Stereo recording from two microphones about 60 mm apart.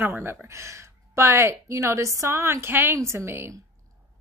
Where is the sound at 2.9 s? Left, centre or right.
Right.